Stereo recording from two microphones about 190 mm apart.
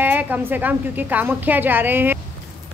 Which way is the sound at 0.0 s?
10° right (ahead or behind).